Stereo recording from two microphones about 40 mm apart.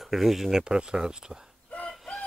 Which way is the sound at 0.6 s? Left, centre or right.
Right.